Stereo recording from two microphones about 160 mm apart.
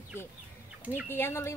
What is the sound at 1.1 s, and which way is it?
Speech, 15° left (ahead or behind).